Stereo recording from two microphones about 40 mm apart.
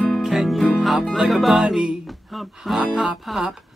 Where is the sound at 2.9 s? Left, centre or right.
Centre.